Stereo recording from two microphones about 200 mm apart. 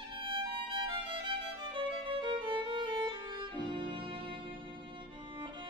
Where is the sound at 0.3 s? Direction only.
25° right (ahead or behind).